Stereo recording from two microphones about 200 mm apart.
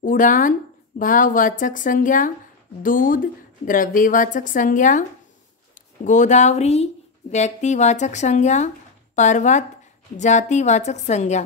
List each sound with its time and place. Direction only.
0.0 s a woman's voice: 40° left (ahead or behind)
6.0 s speech: 35° left (ahead or behind)